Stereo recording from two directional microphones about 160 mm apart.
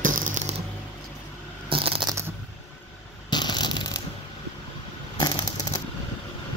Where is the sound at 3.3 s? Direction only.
25° left (ahead or behind).